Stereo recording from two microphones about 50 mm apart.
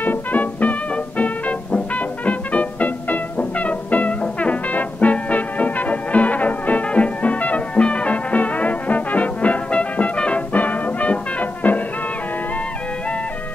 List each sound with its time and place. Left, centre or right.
0.0 s music: left
10.5 s brass instrument: left